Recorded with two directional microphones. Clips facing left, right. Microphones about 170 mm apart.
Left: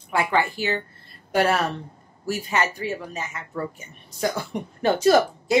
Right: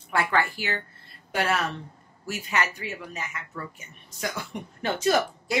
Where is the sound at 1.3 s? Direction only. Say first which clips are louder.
Left 5 dB; 40° left (ahead or behind).